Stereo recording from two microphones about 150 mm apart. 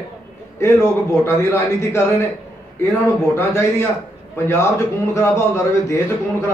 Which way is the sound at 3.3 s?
15° left (ahead or behind).